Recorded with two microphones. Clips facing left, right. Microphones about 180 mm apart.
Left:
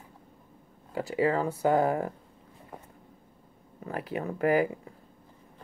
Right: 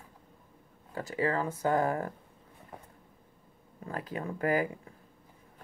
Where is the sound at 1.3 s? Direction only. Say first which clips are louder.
Left 3 dB; 30° left (ahead or behind).